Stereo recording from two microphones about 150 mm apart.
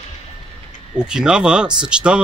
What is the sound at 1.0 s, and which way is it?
Speech, 5° right (ahead or behind).